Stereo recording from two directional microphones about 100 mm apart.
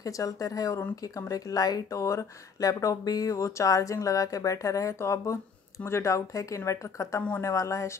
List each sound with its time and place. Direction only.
0.0 s speech: 35° left (ahead or behind)